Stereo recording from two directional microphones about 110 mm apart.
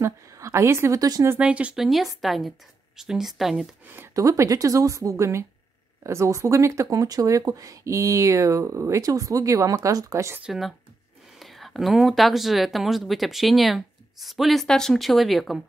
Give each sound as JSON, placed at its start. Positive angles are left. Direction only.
{"t": 0.0, "sound": "a woman's voice", "side_deg": -25}
{"t": 1.3, "sound": "speech", "side_deg": -15}
{"t": 3.9, "sound": "speech", "side_deg": -25}
{"t": 10.4, "sound": "speech", "side_deg": -5}